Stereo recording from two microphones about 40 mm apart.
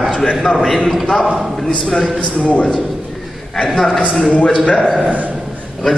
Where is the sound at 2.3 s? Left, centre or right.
Left.